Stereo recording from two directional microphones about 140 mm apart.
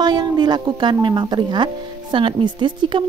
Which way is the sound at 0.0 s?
30° right (ahead or behind).